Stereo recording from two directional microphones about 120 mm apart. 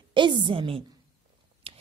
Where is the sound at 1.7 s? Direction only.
55° right (ahead or behind).